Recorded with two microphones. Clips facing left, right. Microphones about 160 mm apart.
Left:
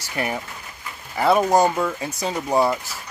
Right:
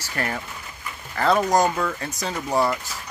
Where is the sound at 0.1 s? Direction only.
15° left (ahead or behind).